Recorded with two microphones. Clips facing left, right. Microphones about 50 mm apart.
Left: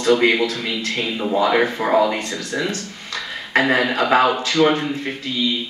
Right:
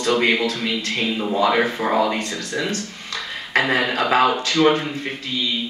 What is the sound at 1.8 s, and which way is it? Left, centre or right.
Speech, left.